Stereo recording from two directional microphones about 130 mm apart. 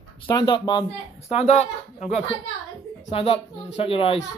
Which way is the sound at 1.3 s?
60° left (ahead or behind).